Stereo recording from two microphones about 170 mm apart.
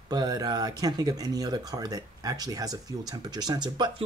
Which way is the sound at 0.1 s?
25° right (ahead or behind).